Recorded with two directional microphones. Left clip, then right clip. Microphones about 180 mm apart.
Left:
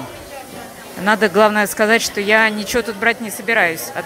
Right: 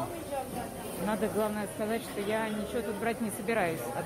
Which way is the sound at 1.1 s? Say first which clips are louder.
Left 19 dB; 25° left (ahead or behind).